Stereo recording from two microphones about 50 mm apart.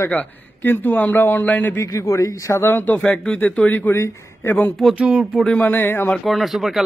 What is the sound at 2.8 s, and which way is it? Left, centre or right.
Speech, left.